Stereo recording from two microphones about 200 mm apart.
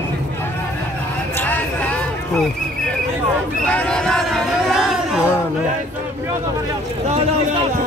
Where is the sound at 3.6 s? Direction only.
5° left (ahead or behind).